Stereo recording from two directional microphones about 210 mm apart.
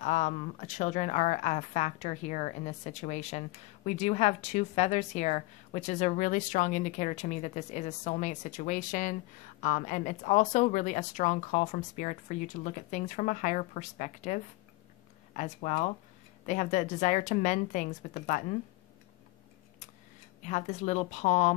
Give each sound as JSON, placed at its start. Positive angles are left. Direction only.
{"t": 0.0, "sound": "a woman's voice", "side_deg": 35}
{"t": 20.4, "sound": "a woman's voice", "side_deg": 35}